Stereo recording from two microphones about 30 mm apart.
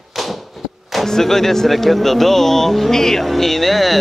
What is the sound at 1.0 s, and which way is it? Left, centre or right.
Speech, centre.